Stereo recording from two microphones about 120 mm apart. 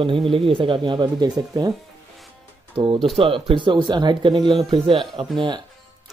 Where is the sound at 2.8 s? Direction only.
40° right (ahead or behind).